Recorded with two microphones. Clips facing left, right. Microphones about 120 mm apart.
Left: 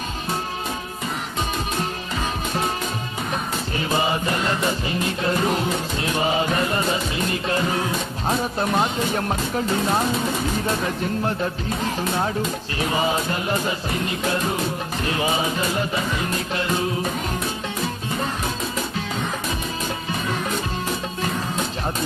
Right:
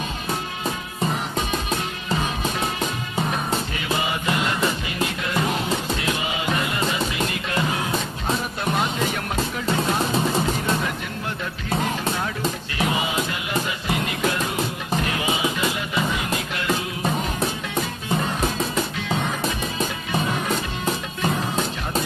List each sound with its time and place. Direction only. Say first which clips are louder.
3.7 s music: left 3 dB; 35° left (ahead or behind)
12.7 s music: left 3 dB; 35° left (ahead or behind)
15.0 s speech: left 5 dB; 35° left (ahead or behind)